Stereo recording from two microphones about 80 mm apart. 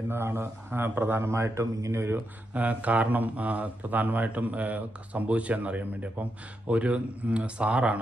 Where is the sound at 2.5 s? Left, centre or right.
Centre.